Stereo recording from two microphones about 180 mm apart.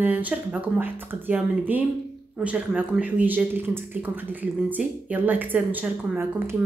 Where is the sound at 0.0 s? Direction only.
10° right (ahead or behind).